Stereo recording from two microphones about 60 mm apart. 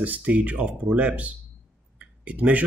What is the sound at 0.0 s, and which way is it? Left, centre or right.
Speech, right.